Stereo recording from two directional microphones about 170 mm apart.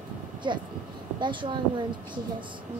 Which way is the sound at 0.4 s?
25° right (ahead or behind).